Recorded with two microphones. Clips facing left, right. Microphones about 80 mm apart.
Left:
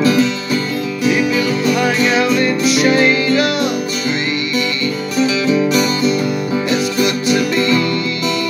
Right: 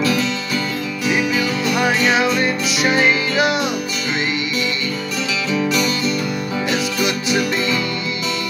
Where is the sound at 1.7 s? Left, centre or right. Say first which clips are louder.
Even; centre.